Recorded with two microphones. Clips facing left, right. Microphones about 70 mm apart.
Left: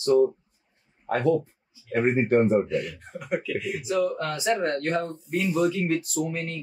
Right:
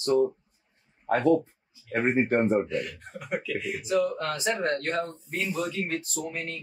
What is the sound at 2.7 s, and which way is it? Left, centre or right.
Speech, centre.